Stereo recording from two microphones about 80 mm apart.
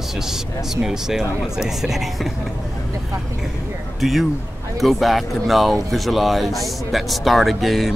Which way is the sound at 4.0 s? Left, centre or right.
Centre.